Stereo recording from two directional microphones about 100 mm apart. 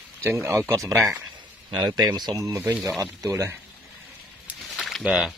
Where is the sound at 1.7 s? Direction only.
45° right (ahead or behind).